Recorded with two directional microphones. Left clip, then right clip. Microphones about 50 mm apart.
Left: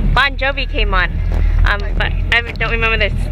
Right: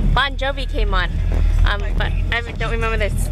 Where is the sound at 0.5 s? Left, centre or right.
Right.